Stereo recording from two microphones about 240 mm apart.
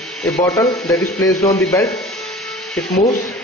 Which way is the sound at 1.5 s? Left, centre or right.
Centre.